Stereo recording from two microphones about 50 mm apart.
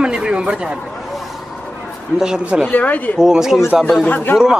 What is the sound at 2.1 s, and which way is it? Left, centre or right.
Speech, centre.